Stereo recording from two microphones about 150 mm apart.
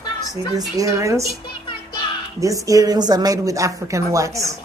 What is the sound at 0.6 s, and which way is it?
Speech, 20° right (ahead or behind).